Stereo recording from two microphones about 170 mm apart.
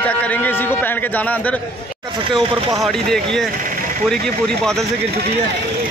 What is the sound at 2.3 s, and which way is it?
Speech, 30° right (ahead or behind).